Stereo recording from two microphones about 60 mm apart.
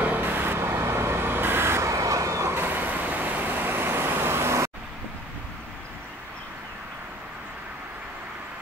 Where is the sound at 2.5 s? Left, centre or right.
Right.